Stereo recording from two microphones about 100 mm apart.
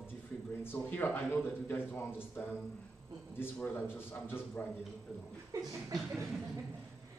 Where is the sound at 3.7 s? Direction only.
20° left (ahead or behind).